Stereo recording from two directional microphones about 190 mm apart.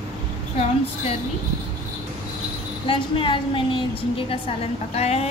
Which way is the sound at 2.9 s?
25° left (ahead or behind).